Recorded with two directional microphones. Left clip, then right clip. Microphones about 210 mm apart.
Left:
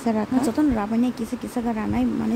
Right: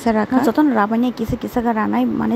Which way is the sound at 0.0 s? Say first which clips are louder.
Right 7 dB; 15° right (ahead or behind).